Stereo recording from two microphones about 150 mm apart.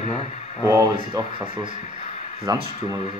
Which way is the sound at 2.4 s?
25° right (ahead or behind).